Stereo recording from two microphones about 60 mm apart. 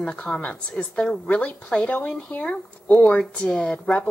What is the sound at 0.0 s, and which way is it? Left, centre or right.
A woman's voice, centre.